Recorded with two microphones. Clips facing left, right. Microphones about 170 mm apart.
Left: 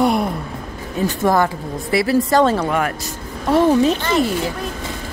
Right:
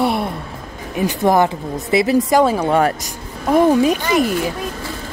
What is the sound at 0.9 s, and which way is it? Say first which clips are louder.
Speech: right 2 dB; 20° right (ahead or behind).